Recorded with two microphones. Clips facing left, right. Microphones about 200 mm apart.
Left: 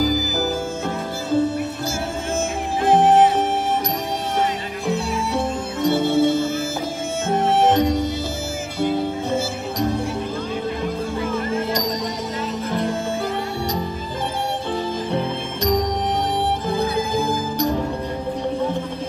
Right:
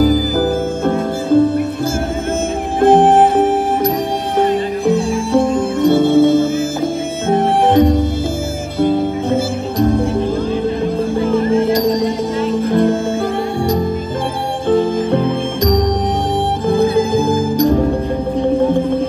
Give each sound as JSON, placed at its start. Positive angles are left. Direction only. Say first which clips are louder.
{"t": 0.0, "sound": "music", "louder": "right 8 dB", "side_deg": -55}
{"t": 2.8, "sound": "music", "louder": "right 5 dB", "side_deg": -55}
{"t": 11.1, "sound": "music", "louder": "right 11 dB", "side_deg": -30}
{"t": 11.9, "sound": "music", "louder": "right 10 dB", "side_deg": -50}
{"t": 14.7, "sound": "music", "louder": "right 15 dB", "side_deg": -50}
{"t": 16.6, "sound": "music", "louder": "right 9 dB", "side_deg": -50}